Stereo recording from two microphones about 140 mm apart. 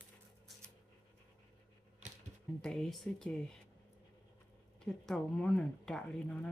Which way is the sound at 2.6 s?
5° left (ahead or behind).